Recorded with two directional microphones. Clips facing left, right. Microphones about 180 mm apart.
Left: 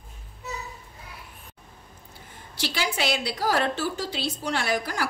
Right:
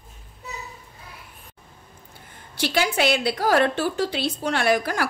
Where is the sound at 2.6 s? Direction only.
55° right (ahead or behind).